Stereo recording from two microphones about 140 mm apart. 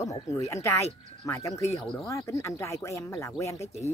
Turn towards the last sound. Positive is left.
turn(degrees=20)  # may be behind; listen again after turning